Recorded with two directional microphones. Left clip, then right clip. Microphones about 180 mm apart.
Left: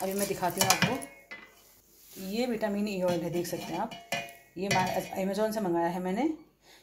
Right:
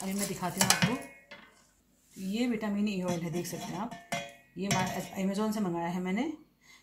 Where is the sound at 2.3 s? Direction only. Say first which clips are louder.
Left 3 dB; 35° left (ahead or behind).